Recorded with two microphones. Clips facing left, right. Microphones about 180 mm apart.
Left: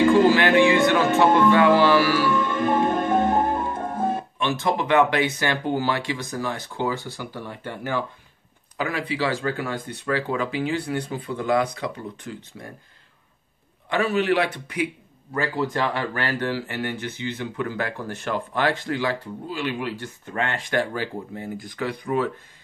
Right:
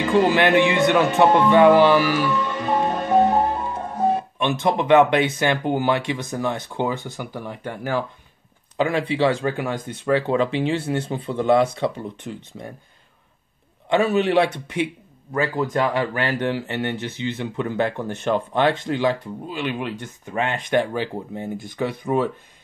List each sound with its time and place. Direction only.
0.1 s speech: 20° right (ahead or behind)
1.5 s music: 15° right (ahead or behind)
2.3 s music: 50° left (ahead or behind)
4.4 s speech: 20° right (ahead or behind)
8.7 s speech: 25° right (ahead or behind)
13.8 s speech: 20° right (ahead or behind)
15.3 s speech: 15° right (ahead or behind)